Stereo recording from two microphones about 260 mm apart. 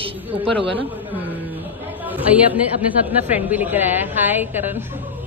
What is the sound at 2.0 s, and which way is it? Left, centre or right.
A woman's voice, centre.